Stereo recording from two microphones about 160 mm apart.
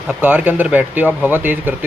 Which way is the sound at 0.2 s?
10° right (ahead or behind).